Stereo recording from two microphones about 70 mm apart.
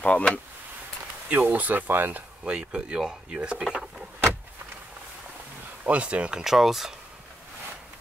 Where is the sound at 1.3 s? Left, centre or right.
Right.